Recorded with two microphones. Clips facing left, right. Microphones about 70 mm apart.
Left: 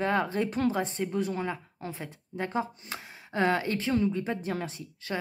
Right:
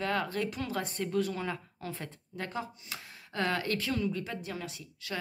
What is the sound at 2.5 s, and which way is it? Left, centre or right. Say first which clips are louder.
Speech: left 8 dB; left.